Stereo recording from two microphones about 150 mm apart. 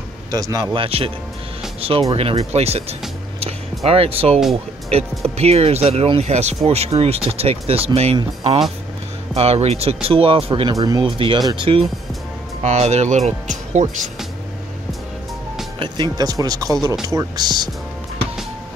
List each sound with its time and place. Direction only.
0.3 s speech: 25° right (ahead or behind)
0.7 s speech: 40° right (ahead or behind)
9.3 s speech: 45° right (ahead or behind)
12.6 s speech: 45° right (ahead or behind)
15.8 s speech: 25° right (ahead or behind)